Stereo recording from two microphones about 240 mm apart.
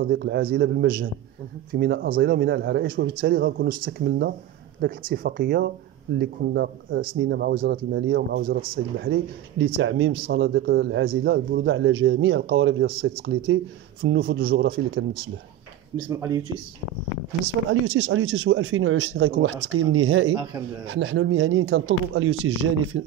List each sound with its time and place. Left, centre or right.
0.0 s a man's voice: right
9.0 s a man's voice: right
10.2 s a man's voice: right
14.4 s a man's voice: right
16.1 s speech: centre
17.6 s a man's voice: right